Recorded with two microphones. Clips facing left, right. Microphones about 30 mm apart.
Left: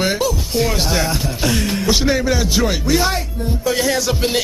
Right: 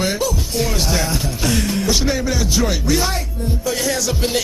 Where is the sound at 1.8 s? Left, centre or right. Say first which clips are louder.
Left 6 dB; centre.